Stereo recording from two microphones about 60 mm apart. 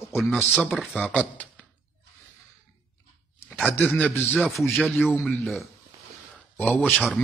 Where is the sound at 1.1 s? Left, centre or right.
Left.